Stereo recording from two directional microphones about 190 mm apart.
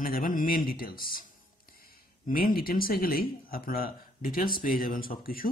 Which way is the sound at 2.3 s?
50° left (ahead or behind).